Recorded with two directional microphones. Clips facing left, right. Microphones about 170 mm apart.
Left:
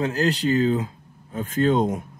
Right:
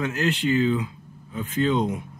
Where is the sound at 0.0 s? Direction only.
35° left (ahead or behind).